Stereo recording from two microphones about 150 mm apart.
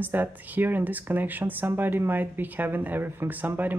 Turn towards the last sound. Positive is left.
turn(degrees=-10)  # may be behind; listen again after turning